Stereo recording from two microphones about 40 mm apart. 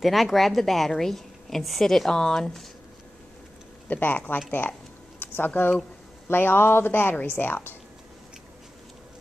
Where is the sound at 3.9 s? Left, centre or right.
Left.